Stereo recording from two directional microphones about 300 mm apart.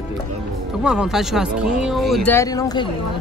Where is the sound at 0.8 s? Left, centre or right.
Centre.